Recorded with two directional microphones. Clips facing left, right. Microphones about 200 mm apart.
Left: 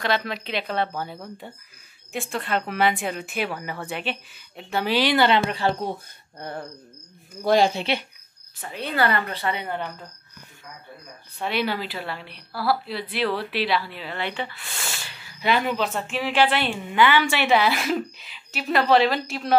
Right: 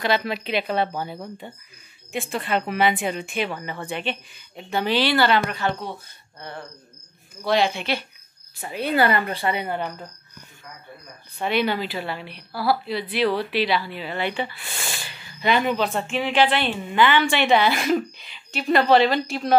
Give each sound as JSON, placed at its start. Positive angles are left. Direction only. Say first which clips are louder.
{"t": 0.0, "sound": "a woman's voice", "louder": "right 2 dB", "side_deg": -5}
{"t": 7.4, "sound": "speech", "louder": "left 2 dB", "side_deg": 45}
{"t": 8.5, "sound": "a woman's voice", "louder": "right 4 dB", "side_deg": -10}
{"t": 11.3, "sound": "a woman's voice", "louder": "right 3 dB", "side_deg": 0}
{"t": 14.6, "sound": "speech", "louder": "right 2 dB", "side_deg": -20}
{"t": 15.0, "sound": "a woman's voice", "louder": "right 1 dB", "side_deg": 5}